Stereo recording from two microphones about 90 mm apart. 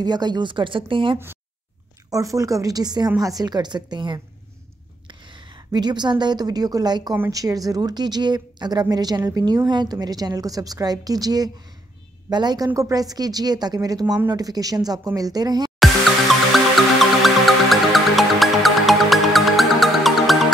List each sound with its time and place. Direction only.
0.0 s speech: 50° right (ahead or behind); by 1.1 s 75° right (ahead or behind)
1.1 s speech: 25° right (ahead or behind)
2.0 s a woman's voice: 40° right (ahead or behind)
12.6 s a woman's voice: 35° right (ahead or behind)
16.5 s music: centre (ahead or behind)